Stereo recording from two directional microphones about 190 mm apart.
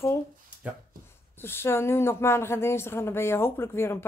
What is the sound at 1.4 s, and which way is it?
Speech, 10° left (ahead or behind).